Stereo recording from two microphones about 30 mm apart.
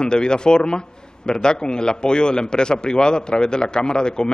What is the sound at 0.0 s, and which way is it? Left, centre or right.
A man's voice, left.